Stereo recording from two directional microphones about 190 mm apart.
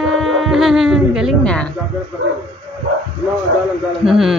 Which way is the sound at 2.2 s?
90° right.